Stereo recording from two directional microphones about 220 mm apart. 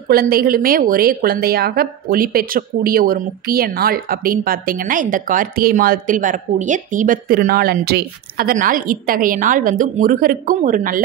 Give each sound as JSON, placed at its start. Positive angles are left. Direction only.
{"t": 0.1, "sound": "a woman's voice", "side_deg": -40}